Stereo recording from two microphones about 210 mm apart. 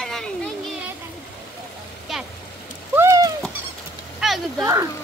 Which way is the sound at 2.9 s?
15° right (ahead or behind).